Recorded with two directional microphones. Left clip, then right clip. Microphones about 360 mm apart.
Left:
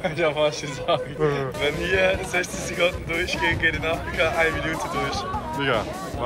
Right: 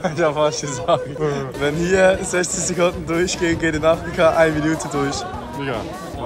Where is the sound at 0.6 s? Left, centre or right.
Centre.